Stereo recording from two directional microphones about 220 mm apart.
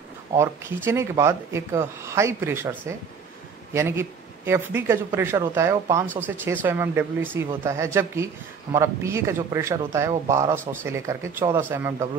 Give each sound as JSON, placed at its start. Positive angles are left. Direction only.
{"t": 0.4, "sound": "a man's voice", "side_deg": -10}